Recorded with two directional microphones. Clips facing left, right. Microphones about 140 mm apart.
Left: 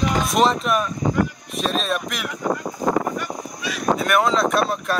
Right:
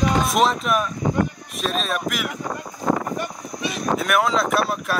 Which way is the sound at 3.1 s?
25° right (ahead or behind).